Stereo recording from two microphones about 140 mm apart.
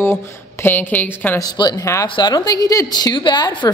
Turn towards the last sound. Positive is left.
turn(degrees=35)  # may be behind; listen again after turning